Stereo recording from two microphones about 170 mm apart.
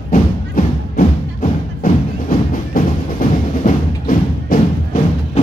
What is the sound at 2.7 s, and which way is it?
Music, 55° left (ahead or behind).